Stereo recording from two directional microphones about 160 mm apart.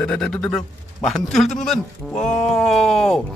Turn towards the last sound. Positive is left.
turn(degrees=5)  # may be behind; listen again after turning